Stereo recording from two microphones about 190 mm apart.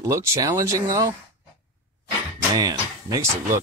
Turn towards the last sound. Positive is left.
turn(degrees=-15)  # may be behind; listen again after turning